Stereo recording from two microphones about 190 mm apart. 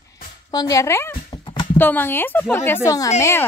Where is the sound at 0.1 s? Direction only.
20° left (ahead or behind).